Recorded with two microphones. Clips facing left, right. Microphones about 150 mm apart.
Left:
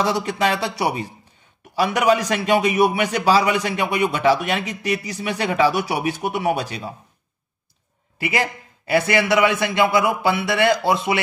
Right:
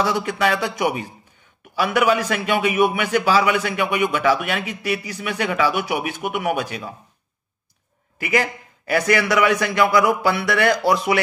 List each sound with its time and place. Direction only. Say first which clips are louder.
0.0 s a man's voice: even; 35° left (ahead or behind)
8.2 s a man's voice: right 2 dB; 30° left (ahead or behind)